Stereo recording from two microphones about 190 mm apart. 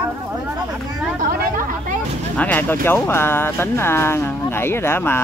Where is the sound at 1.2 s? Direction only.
45° right (ahead or behind).